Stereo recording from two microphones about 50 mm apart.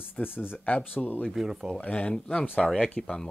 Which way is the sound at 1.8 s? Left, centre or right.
Left.